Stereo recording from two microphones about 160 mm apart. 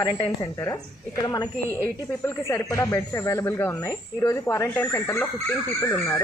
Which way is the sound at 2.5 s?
20° left (ahead or behind).